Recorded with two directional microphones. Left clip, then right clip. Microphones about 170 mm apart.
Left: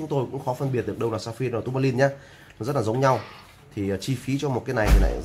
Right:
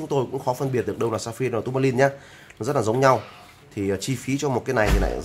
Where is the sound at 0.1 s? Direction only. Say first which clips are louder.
Right 4 dB; 15° right (ahead or behind).